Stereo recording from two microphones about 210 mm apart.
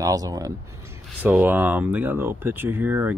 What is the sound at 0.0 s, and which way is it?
Speech, 15° right (ahead or behind).